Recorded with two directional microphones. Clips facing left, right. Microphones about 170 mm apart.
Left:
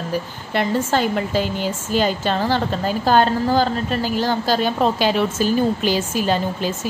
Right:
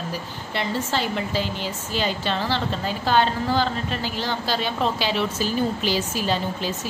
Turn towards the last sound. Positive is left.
turn(degrees=50)  # may be behind; listen again after turning